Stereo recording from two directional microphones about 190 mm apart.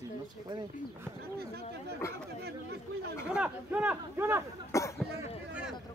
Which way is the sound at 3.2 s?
5° right (ahead or behind).